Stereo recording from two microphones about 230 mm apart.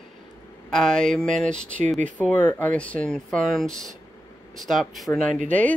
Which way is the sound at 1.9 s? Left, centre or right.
Right.